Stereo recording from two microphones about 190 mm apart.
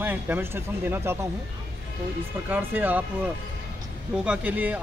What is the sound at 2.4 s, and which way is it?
Speech, 10° right (ahead or behind).